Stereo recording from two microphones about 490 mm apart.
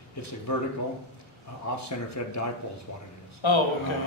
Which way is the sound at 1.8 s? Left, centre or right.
Left.